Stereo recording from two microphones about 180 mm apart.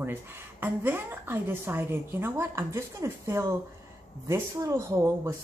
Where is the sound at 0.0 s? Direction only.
10° right (ahead or behind).